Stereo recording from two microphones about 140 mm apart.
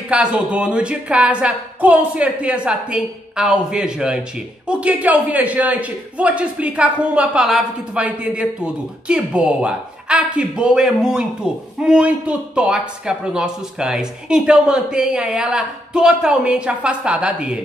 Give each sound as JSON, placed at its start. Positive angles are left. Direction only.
{"t": 0.1, "sound": "a man's voice", "side_deg": -10}